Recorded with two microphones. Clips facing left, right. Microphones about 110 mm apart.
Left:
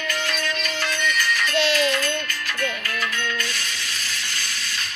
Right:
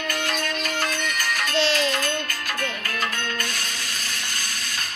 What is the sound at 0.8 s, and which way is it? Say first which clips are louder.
Music: left 2 dB; 45° right (ahead or behind).